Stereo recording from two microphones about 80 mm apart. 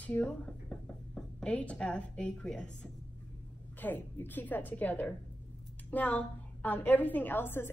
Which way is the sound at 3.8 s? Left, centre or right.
Left.